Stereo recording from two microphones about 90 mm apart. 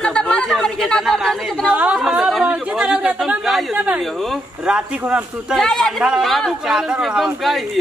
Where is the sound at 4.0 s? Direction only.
Centre (ahead or behind).